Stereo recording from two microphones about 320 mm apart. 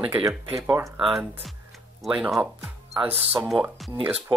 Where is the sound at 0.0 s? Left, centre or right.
Centre.